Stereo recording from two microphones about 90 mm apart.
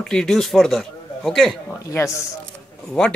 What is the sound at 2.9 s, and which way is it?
Speech, 10° left (ahead or behind).